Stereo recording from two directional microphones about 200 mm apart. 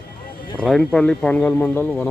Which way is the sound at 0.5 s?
5° left (ahead or behind).